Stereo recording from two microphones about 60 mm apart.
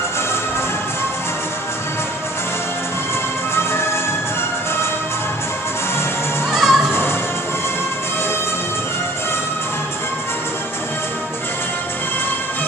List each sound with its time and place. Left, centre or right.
3.5 s music: left
6.5 s music: centre
6.9 s music: left